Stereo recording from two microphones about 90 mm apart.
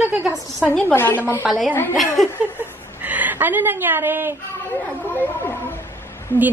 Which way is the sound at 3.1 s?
20° right (ahead or behind).